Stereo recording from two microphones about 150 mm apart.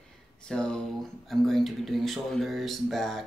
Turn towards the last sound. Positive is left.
turn(degrees=0)  # may be behind; listen again after turning